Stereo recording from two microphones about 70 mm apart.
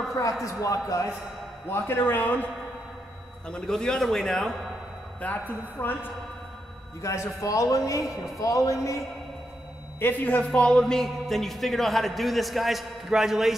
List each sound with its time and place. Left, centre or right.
0.2 s a man's voice: left
1.7 s a man's voice: left
3.4 s a man's voice: centre
5.2 s a man's voice: left
7.0 s a man's voice: left
9.9 s a man's voice: left
10.4 s a man's voice: centre